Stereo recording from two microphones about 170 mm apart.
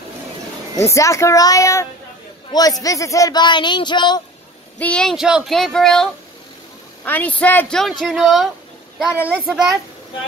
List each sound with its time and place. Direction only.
0.7 s speech: 15° left (ahead or behind)
4.7 s speech: 5° left (ahead or behind)
7.1 s speech: 10° left (ahead or behind)